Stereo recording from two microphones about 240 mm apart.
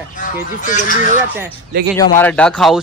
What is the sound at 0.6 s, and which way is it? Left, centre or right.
Speech, left.